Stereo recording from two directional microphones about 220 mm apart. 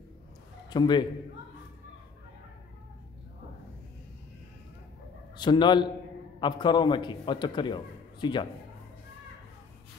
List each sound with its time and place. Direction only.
0.7 s a man's voice: 20° left (ahead or behind)
5.4 s a man's voice: 20° left (ahead or behind)